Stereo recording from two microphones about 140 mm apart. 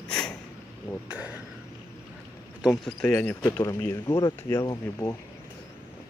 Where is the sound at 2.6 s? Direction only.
5° left (ahead or behind); by 5.1 s 25° left (ahead or behind).